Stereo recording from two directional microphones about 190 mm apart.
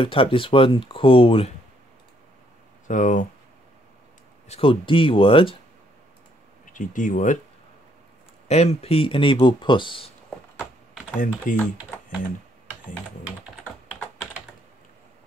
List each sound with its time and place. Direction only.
0.0 s speech: 30° left (ahead or behind)
2.9 s speech: 40° left (ahead or behind)
4.5 s speech: 30° left (ahead or behind)
6.6 s speech: 45° left (ahead or behind)
8.5 s speech: 35° left (ahead or behind)
11.5 s speech: 45° left (ahead or behind)